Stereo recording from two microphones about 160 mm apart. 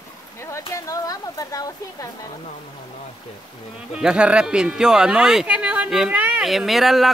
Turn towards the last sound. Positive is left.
turn(degrees=0)  # may be behind; listen again after turning